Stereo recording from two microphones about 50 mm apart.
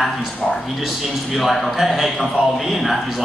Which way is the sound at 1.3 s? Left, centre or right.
Centre.